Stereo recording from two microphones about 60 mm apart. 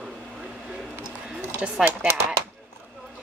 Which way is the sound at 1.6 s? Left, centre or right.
Centre.